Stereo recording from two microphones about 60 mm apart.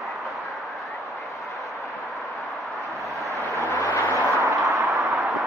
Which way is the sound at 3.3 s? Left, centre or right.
Right.